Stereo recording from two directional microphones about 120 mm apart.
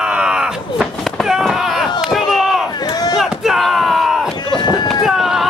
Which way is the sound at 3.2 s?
Centre (ahead or behind).